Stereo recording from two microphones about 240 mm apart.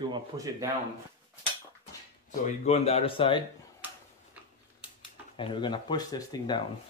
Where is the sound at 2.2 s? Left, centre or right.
Left.